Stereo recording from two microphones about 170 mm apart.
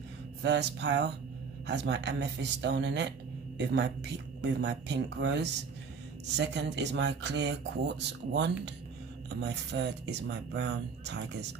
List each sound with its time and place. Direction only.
0.4 s speech: 90° right